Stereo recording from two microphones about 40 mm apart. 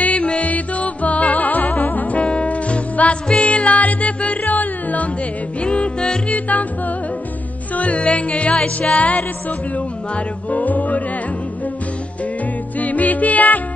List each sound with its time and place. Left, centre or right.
0.0 s music: left
2.1 s music: left
5.6 s music: left
7.7 s music: left
12.7 s music: left